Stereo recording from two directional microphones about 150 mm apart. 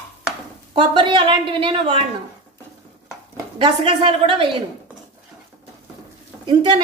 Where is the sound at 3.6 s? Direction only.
35° right (ahead or behind).